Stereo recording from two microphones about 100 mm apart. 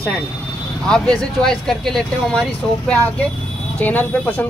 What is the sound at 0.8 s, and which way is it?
Speech, 5° left (ahead or behind).